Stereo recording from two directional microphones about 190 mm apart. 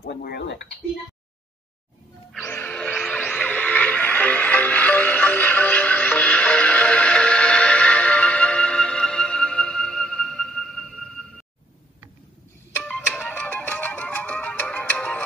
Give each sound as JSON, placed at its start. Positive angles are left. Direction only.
{"t": 0.0, "sound": "a sound", "side_deg": 55}
{"t": 2.3, "sound": "music", "side_deg": 10}
{"t": 12.7, "sound": "music", "side_deg": 5}